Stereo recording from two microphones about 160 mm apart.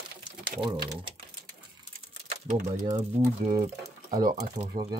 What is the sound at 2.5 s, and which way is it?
Speech, 45° right (ahead or behind).